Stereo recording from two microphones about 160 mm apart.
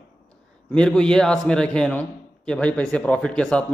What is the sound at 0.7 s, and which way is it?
A man's voice, 5° left (ahead or behind).